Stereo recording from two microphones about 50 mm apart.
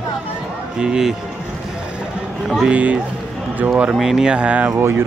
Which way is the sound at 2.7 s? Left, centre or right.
Right.